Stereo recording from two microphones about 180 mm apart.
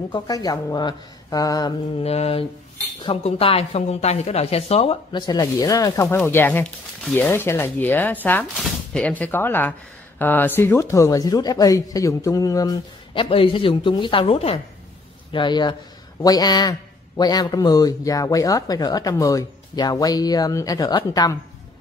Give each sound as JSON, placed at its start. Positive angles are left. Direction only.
{"t": 0.1, "sound": "speech", "side_deg": 20}
{"t": 2.0, "sound": "speech", "side_deg": 35}
{"t": 5.2, "sound": "speech", "side_deg": 20}